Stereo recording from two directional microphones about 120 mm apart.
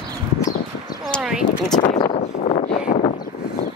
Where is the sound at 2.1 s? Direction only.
70° left (ahead or behind).